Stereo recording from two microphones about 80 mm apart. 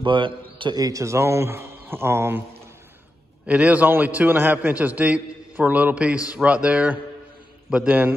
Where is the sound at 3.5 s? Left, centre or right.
Centre.